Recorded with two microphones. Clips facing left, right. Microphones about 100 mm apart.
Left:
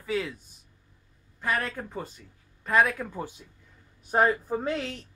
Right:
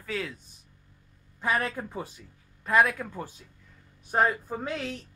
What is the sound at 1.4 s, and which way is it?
Speech, 15° right (ahead or behind).